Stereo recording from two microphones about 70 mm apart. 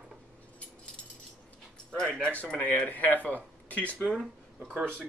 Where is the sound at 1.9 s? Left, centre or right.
Centre.